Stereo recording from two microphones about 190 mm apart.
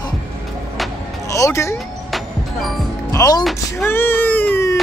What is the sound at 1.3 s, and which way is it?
Speech, 15° left (ahead or behind).